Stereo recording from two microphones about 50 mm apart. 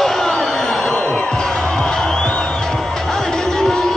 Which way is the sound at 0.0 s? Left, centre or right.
Centre.